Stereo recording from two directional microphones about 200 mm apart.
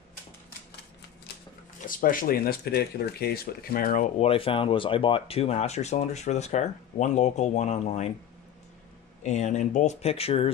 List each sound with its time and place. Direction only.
1.9 s speech: 45° left (ahead or behind)
4.3 s speech: 25° left (ahead or behind)
9.2 s speech: 35° left (ahead or behind)